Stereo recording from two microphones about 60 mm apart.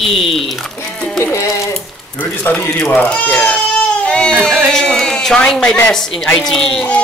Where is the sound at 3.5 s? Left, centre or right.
Centre.